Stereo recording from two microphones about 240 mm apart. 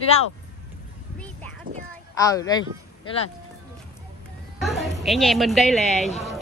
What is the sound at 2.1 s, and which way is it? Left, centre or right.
Speech, centre.